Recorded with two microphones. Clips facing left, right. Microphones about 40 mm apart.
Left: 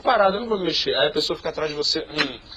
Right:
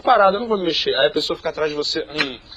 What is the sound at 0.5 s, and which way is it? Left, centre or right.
A man's voice, right.